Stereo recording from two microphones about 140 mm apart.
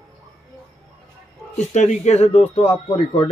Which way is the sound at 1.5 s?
55° left (ahead or behind).